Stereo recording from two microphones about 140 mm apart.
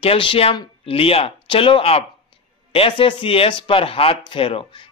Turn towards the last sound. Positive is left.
turn(degrees=40)  # may be behind; listen again after turning